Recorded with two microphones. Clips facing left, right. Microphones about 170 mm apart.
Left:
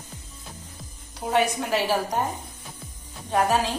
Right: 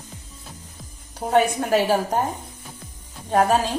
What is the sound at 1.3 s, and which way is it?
Speech, 50° right (ahead or behind).